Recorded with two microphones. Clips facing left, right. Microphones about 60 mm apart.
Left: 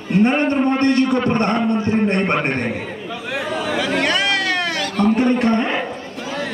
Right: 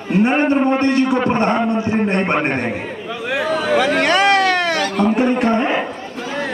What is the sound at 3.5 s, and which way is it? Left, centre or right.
Chatter, right.